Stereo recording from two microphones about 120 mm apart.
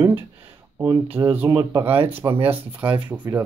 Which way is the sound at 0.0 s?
20° right (ahead or behind).